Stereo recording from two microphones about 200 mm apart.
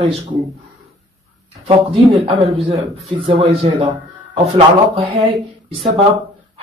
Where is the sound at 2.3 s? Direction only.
30° right (ahead or behind).